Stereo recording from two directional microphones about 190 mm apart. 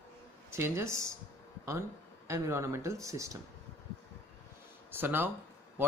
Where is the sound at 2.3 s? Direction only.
15° right (ahead or behind).